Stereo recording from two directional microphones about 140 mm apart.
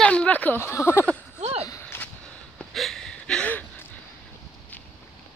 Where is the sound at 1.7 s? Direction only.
15° left (ahead or behind).